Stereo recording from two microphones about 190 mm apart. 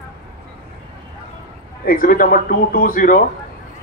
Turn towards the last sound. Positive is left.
turn(degrees=45)  # may be behind; listen again after turning